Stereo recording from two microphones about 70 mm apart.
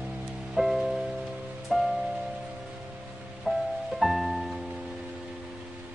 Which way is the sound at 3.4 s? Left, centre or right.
Centre.